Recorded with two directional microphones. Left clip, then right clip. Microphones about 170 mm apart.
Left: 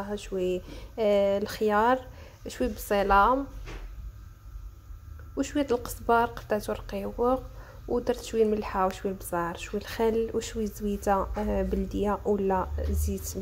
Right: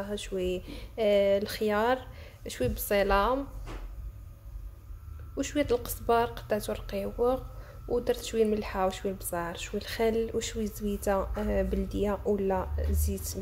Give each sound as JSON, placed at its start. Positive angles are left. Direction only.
{"t": 0.0, "sound": "speech", "side_deg": 0}
{"t": 5.3, "sound": "speech", "side_deg": 5}